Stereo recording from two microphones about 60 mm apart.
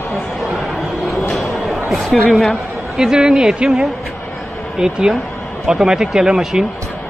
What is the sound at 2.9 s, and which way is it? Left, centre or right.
Speech, centre.